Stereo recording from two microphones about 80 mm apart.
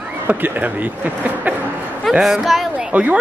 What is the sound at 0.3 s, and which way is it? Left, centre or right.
A man's voice, right.